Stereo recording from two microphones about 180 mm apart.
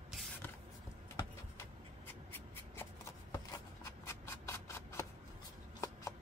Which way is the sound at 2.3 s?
15° left (ahead or behind).